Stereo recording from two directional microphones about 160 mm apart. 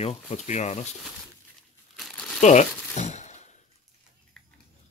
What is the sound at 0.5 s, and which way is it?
Speech, 45° left (ahead or behind).